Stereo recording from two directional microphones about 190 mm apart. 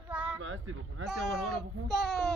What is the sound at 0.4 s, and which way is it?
Speech, 90° right.